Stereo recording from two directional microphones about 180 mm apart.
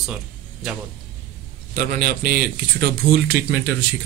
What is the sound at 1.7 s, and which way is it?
A man's voice, 55° right (ahead or behind).